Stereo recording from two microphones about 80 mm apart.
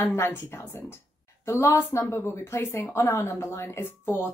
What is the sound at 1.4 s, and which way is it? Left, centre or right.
A woman's voice, left.